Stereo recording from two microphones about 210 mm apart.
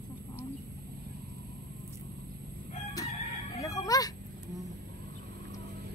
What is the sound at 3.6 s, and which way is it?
Chicken, 15° left (ahead or behind).